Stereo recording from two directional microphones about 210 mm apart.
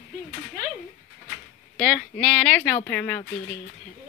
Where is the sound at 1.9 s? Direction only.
5° left (ahead or behind).